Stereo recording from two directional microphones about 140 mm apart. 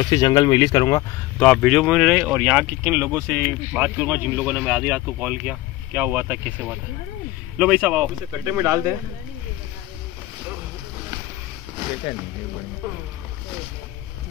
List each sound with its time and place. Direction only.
0.0 s speech: 30° left (ahead or behind)
1.4 s speech: 5° left (ahead or behind)
8.5 s speech: 20° right (ahead or behind)